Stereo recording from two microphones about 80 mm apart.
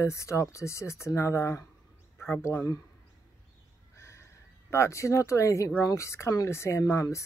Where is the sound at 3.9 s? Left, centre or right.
Left.